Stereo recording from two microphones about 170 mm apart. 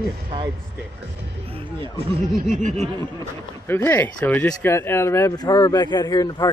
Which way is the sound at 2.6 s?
40° right (ahead or behind).